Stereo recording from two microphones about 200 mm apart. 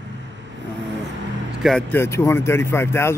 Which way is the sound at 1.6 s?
5° left (ahead or behind).